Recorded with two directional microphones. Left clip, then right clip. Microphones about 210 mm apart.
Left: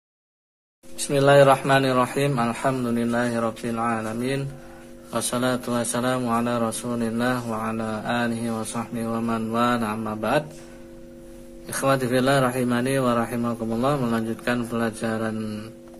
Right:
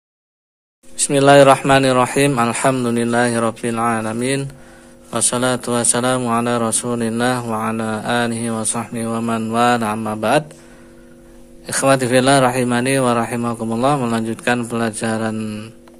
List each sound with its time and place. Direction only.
1.0 s a man's voice: 40° right (ahead or behind)
11.6 s speech: 40° right (ahead or behind)